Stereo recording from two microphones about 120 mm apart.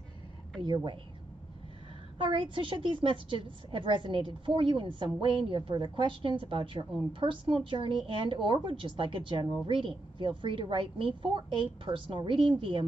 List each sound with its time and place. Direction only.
0.6 s a woman's voice: 40° right (ahead or behind)
2.2 s a woman's voice: 45° right (ahead or behind)